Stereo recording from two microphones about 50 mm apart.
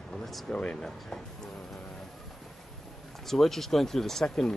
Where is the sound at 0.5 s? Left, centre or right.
Left.